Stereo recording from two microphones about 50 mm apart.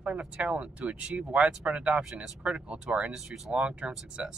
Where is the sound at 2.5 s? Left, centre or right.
Right.